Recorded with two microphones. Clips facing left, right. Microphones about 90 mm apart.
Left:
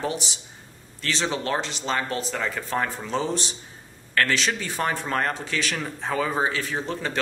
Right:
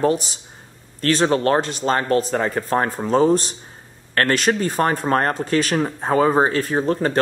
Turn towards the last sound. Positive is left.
turn(degrees=-45)  # may be behind; listen again after turning